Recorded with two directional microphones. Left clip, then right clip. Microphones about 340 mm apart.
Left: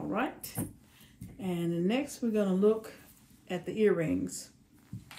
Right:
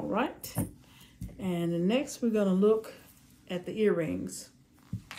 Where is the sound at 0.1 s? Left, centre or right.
Centre.